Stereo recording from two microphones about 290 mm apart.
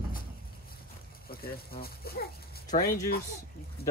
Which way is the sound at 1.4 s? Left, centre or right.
Left.